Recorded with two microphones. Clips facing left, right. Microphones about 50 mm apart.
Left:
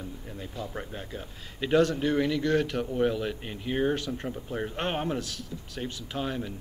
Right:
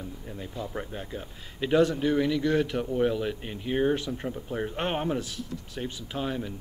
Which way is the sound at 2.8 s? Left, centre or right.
Centre.